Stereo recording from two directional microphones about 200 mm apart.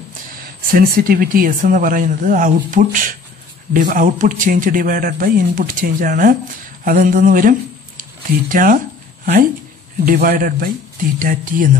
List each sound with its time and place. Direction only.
0.7 s speech: 45° right (ahead or behind)
8.0 s a sound: 45° right (ahead or behind)
10.0 s speech: 45° right (ahead or behind)